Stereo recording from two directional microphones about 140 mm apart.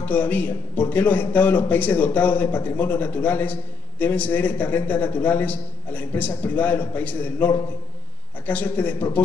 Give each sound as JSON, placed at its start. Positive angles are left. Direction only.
{"t": 0.0, "sound": "a man's voice", "side_deg": 10}